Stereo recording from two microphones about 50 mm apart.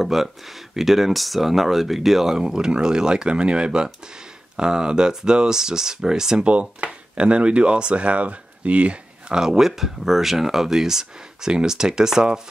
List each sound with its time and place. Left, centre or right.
0.0 s speech: centre
6.4 s speech: right
9.4 s speech: centre